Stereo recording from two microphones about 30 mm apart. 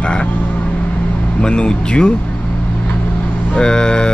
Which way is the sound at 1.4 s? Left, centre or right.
Left.